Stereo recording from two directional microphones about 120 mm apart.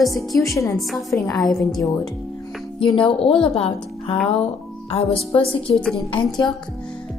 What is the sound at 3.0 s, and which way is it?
Speech, 50° left (ahead or behind).